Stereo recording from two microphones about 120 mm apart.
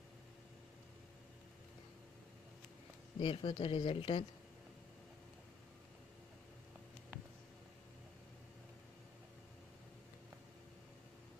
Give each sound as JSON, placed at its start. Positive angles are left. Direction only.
{"t": 3.2, "sound": "speech", "side_deg": 45}